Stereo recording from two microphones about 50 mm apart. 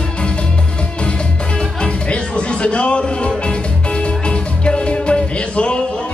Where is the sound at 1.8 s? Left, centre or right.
Left.